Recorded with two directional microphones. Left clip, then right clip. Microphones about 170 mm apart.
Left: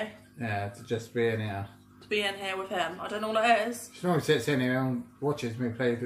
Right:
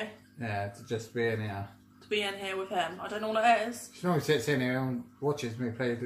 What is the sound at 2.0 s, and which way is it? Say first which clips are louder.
Speech: left 2 dB; 15° left (ahead or behind).